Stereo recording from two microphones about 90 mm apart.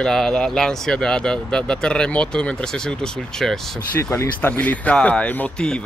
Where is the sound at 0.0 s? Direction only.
5° left (ahead or behind).